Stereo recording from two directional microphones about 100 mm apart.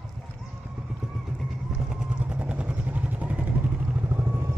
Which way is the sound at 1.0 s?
5° right (ahead or behind).